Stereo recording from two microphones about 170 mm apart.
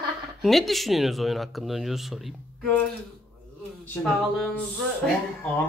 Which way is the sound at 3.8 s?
10° left (ahead or behind).